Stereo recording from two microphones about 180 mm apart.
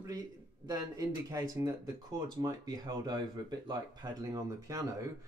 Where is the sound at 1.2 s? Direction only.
15° right (ahead or behind).